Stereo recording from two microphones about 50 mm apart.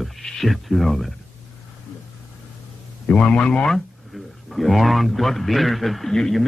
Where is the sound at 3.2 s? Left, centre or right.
Left.